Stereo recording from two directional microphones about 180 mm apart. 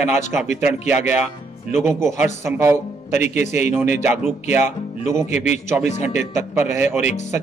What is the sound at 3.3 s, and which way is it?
Speech, 40° left (ahead or behind).